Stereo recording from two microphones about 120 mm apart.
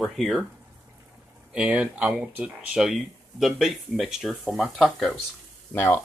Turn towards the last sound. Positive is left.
turn(degrees=15)  # may be behind; listen again after turning